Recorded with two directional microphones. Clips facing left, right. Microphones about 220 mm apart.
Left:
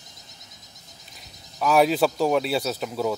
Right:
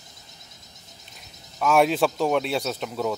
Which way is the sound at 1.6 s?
Centre (ahead or behind).